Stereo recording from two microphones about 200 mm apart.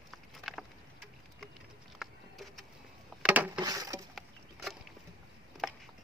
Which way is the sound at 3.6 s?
20° right (ahead or behind).